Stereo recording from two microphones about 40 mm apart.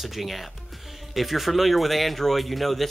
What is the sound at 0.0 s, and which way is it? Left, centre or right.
Speech, centre.